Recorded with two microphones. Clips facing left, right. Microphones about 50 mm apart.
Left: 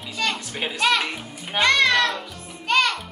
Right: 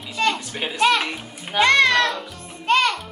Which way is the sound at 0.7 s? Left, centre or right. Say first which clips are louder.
Right 3 dB; centre.